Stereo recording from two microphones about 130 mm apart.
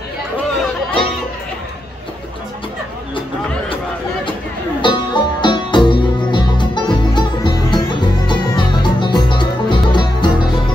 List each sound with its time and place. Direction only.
4.8 s music: 35° left (ahead or behind)